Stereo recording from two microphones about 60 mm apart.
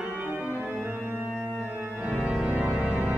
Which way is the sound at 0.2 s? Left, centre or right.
Right.